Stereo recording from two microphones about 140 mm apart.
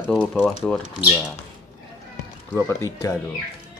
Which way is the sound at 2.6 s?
20° left (ahead or behind).